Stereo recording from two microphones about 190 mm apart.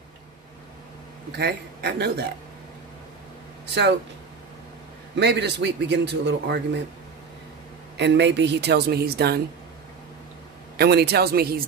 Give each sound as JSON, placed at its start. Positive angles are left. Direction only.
{"t": 1.3, "sound": "a man's voice", "side_deg": -60}
{"t": 5.1, "sound": "a man's voice", "side_deg": -65}
{"t": 8.0, "sound": "a man's voice", "side_deg": -65}
{"t": 10.8, "sound": "a man's voice", "side_deg": -60}